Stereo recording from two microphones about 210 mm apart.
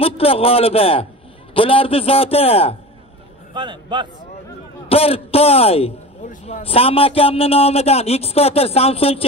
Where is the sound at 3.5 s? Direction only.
20° right (ahead or behind).